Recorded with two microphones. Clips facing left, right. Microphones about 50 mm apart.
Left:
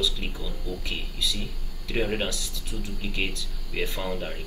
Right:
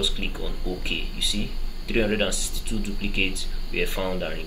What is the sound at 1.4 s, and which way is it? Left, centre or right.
Speech, right.